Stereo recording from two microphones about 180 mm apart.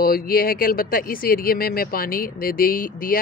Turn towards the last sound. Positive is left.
turn(degrees=55)  # may be behind; listen again after turning